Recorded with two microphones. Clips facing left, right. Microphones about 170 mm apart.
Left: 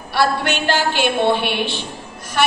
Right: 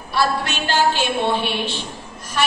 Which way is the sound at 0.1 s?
65° left (ahead or behind).